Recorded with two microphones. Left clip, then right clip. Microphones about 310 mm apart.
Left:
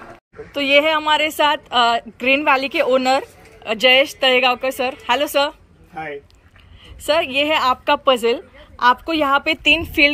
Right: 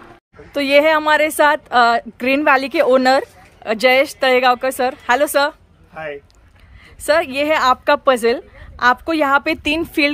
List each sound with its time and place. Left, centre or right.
0.5 s speech: centre
7.1 s speech: centre